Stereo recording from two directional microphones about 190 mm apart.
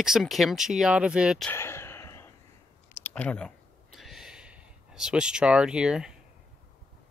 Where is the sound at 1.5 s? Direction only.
15° left (ahead or behind); by 6.1 s 5° right (ahead or behind).